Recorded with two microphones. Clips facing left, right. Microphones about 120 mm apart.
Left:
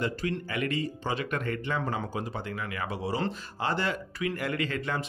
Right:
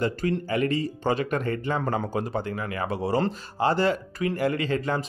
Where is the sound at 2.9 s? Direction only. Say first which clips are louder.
Right 6 dB; 50° right (ahead or behind).